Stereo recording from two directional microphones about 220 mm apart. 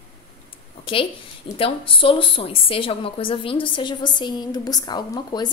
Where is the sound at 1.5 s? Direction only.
25° left (ahead or behind).